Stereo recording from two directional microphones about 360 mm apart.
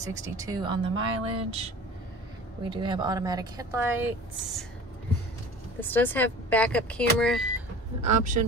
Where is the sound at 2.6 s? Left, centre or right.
Centre.